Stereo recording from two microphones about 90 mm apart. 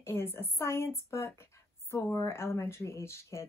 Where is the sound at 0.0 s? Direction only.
25° left (ahead or behind).